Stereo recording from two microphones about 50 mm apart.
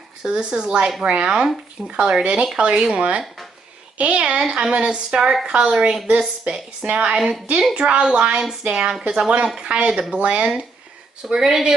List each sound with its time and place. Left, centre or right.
0.2 s a woman's voice: centre
11.2 s a woman's voice: centre